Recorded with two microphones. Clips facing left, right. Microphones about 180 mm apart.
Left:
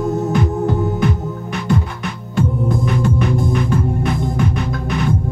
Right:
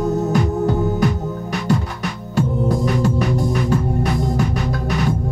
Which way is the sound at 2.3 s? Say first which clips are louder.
Even; 35° right (ahead or behind).